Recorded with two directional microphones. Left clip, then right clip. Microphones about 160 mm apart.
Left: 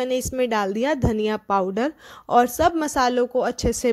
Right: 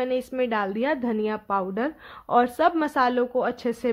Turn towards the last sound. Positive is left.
turn(degrees=35)  # may be behind; listen again after turning